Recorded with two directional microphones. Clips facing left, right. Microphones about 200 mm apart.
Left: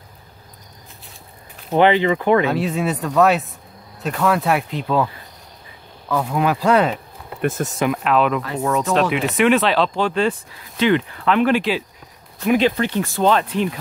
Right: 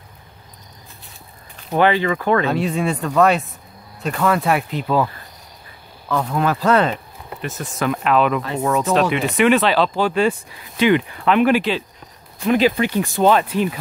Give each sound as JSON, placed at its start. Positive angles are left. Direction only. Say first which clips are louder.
{"t": 1.7, "sound": "speech", "louder": "left 2 dB", "side_deg": 20}
{"t": 2.5, "sound": "speech", "louder": "right 1 dB", "side_deg": 0}
{"t": 6.0, "sound": "speech", "louder": "even", "side_deg": 10}
{"t": 7.4, "sound": "speech", "louder": "left 8 dB", "side_deg": 50}
{"t": 7.9, "sound": "speech", "louder": "right 3 dB", "side_deg": 0}
{"t": 12.5, "sound": "speech", "louder": "right 1 dB", "side_deg": -10}